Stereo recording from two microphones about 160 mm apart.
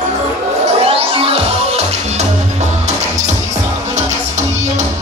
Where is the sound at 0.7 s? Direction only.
40° right (ahead or behind).